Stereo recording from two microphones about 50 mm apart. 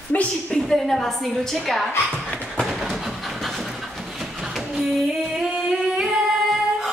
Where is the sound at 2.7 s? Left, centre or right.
Centre.